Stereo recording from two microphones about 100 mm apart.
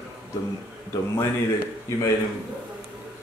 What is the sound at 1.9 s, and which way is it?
Speech, 30° left (ahead or behind).